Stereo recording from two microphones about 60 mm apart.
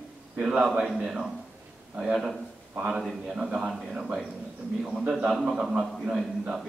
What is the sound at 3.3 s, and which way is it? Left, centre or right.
Speech, centre.